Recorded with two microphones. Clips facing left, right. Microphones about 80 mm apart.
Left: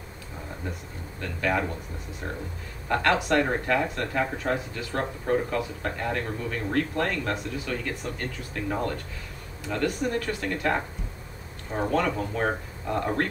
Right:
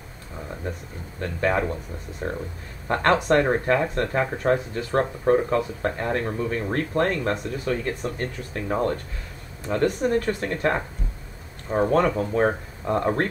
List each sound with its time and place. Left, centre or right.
1.2 s speech: right
2.9 s speech: right
11.9 s speech: right